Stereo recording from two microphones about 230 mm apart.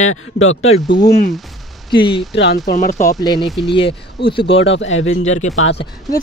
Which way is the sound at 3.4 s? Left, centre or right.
Centre.